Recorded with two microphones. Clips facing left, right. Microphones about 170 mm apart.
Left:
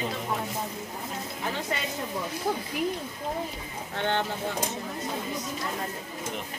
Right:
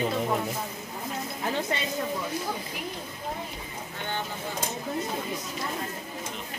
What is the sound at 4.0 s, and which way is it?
Speech, 70° left (ahead or behind).